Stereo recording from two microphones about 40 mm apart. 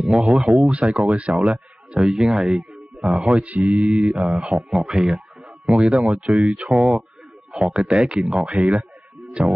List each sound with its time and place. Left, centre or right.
0.1 s speech: centre
0.5 s a man's voice: right
3.4 s speech: right
3.8 s speech: right
4.2 s speech: centre
4.9 s speech: centre
6.3 s speech: right
6.7 s speech: centre
8.3 s speech: centre
8.5 s speech: right